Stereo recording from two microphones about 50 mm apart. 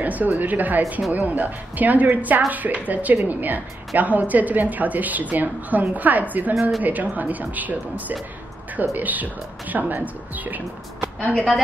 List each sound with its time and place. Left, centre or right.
0.0 s a woman's voice: right
11.3 s a woman's voice: centre